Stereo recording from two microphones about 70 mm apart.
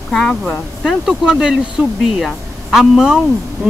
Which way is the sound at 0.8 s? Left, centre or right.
Centre.